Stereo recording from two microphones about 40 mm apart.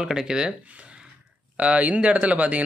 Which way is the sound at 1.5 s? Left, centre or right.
Right.